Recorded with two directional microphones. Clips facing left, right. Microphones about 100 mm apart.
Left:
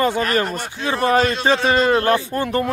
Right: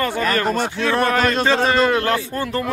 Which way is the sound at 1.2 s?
50° right (ahead or behind).